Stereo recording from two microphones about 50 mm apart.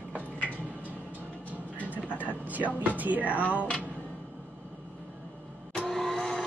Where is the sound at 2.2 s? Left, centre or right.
Right.